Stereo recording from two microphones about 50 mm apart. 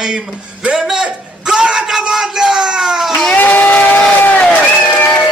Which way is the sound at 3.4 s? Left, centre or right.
Left.